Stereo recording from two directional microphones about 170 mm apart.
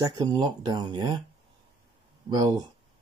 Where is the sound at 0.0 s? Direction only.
25° right (ahead or behind).